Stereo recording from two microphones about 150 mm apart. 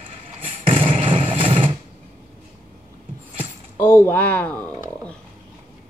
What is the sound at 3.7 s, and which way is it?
Speech, 15° left (ahead or behind).